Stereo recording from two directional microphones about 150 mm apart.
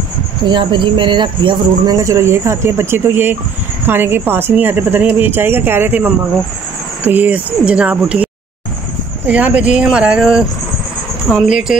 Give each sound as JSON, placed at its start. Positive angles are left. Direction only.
{"t": 0.5, "sound": "speech", "side_deg": -30}
{"t": 11.7, "sound": "music", "side_deg": -5}